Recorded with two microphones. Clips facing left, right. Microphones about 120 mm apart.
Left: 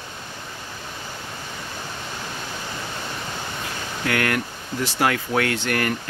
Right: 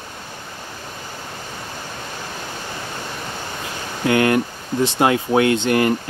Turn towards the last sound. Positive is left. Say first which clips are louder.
# right 7 dB
turn(degrees=-20)  # may be behind; listen again after turning